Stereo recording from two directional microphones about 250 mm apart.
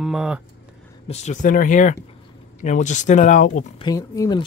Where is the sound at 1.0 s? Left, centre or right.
Left.